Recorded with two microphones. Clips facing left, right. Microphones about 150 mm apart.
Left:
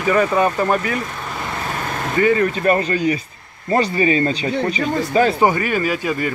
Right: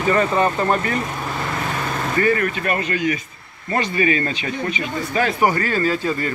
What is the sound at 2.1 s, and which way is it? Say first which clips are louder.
Speech: left 3 dB; 20° left (ahead or behind).